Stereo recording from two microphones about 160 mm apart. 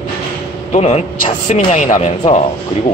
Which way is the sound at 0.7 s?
40° left (ahead or behind).